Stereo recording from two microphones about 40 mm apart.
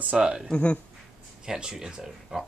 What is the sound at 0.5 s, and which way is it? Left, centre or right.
Speech, left.